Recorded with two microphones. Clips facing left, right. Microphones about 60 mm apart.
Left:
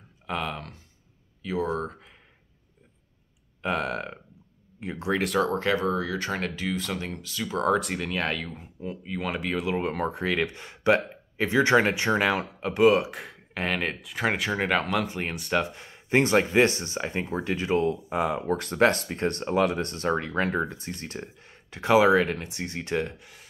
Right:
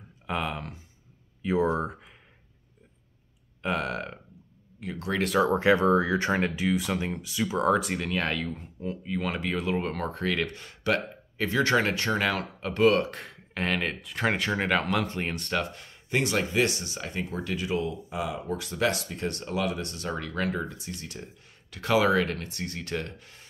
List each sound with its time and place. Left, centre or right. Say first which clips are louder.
0.3 s speech: even; centre
1.4 s speech: right 3 dB; right
3.6 s speech: left 1 dB; centre
4.7 s speech: left 3 dB; left
5.1 s speech: even; centre
5.5 s speech: right 4 dB; centre
5.8 s speech: right 4 dB; right
6.4 s speech: right 3 dB; centre
7.4 s speech: even; centre; by 16.2 s left
16.2 s speech: left 5 dB; left; by 23.4 s centre